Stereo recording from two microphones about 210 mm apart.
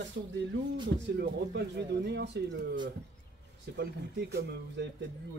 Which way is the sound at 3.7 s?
50° right (ahead or behind).